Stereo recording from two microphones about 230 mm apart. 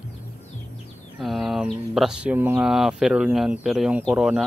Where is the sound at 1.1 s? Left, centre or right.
Centre.